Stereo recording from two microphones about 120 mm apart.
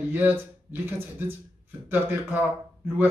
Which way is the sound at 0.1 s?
15° right (ahead or behind).